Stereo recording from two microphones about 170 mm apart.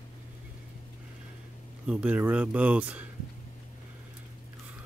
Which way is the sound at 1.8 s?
5° right (ahead or behind).